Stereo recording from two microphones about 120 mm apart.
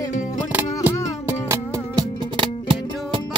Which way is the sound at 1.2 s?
25° right (ahead or behind).